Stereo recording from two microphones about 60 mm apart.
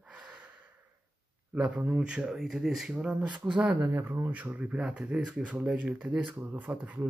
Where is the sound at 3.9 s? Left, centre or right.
Right.